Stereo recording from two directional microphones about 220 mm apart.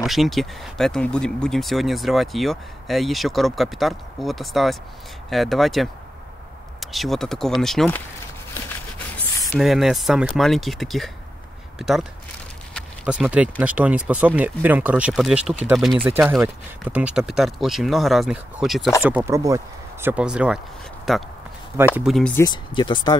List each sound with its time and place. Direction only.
0.0 s speech: centre (ahead or behind)
9.5 s speech: centre (ahead or behind)
22.3 s speech: 20° left (ahead or behind)